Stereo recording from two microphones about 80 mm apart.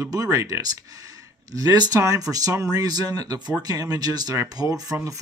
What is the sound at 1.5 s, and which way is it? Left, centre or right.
Speech, right.